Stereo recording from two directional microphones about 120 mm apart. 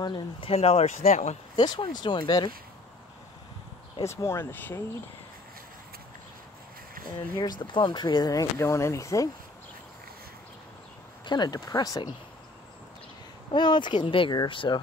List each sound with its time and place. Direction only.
0.0 s speech: 45° left (ahead or behind); by 1.4 s 70° left (ahead or behind)
1.6 s speech: 35° left (ahead or behind)
4.0 s speech: 25° left (ahead or behind)
7.1 s speech: 35° left (ahead or behind)
11.2 s speech: 35° left (ahead or behind)
13.5 s speech: 40° left (ahead or behind)